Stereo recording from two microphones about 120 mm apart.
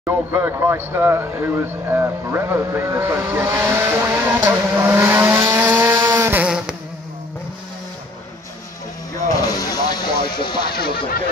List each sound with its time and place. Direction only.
0.0 s speech: 20° right (ahead or behind)
6.4 s vehicle: 5° right (ahead or behind)
9.3 s music: 30° left (ahead or behind)
10.4 s speech: 40° left (ahead or behind)